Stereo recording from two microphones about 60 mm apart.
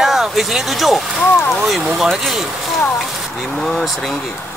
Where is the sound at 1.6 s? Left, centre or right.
Centre.